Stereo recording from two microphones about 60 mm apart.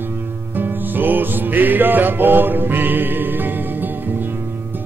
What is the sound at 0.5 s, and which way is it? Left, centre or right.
Music, right.